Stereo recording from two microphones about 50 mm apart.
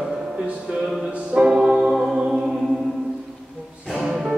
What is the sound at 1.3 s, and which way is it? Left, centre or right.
Music, centre.